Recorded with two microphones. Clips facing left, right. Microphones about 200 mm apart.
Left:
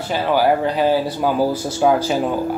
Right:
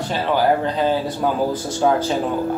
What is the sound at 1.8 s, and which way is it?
Speech, 10° left (ahead or behind).